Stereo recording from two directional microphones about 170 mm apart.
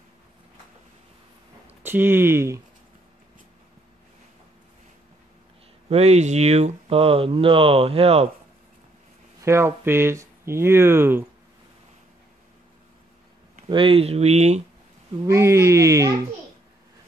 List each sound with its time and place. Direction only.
1.8 s speech: 10° right (ahead or behind)
5.9 s speech: 40° right (ahead or behind)
9.4 s speech: 15° right (ahead or behind)
13.7 s speech: 30° right (ahead or behind)
15.2 s speech: 15° right (ahead or behind)